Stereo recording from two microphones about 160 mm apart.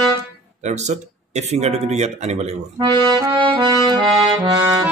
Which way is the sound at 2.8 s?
25° right (ahead or behind).